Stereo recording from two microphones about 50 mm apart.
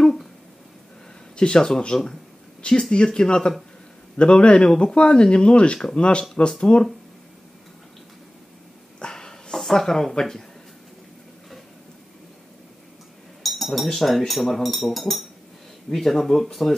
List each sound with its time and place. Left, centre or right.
0.0 s a sound: centre
1.3 s speech: centre
4.6 s speech: centre
9.0 s a sound: centre
9.6 s speech: centre
13.4 s chink: centre
13.8 s speech: centre